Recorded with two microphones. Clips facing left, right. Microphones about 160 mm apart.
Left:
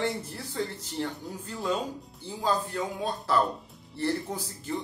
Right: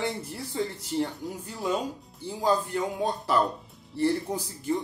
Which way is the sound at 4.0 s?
15° right (ahead or behind).